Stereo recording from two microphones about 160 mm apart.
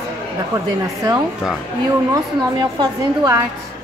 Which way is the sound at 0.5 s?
20° right (ahead or behind).